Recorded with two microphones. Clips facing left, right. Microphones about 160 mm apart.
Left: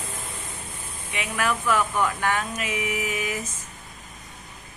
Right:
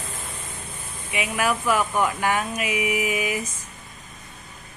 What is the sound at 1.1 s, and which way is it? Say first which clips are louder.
Speech: right 3 dB; 10° right (ahead or behind).